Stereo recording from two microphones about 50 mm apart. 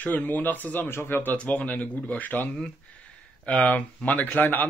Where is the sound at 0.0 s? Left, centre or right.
Left.